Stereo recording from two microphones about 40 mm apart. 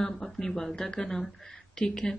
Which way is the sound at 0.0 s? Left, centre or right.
Centre.